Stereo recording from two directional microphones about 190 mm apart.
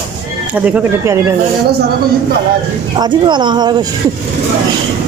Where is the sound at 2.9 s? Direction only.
20° right (ahead or behind).